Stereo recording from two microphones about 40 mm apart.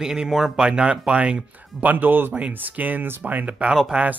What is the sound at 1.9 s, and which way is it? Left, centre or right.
Speech, right.